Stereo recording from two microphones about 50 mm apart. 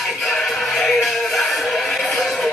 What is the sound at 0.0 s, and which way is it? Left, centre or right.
Music, centre.